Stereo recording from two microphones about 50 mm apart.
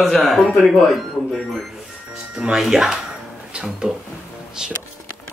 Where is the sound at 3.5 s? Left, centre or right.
Centre.